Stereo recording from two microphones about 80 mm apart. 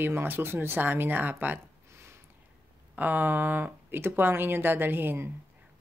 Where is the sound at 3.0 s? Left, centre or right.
Right.